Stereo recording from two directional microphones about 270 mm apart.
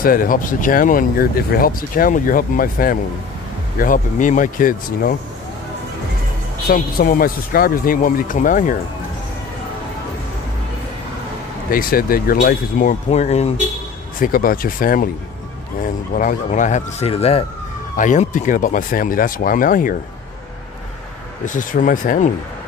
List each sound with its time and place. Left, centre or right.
0.0 s speech: left
6.7 s speech: left
11.7 s speech: left
21.5 s speech: left